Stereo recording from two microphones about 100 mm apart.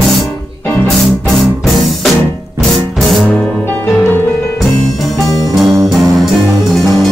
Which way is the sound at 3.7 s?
20° left (ahead or behind).